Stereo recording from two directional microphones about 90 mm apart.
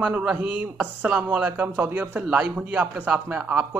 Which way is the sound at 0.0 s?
15° right (ahead or behind).